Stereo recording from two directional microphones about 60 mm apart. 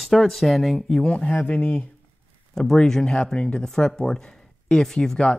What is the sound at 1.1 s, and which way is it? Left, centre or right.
Speech, left.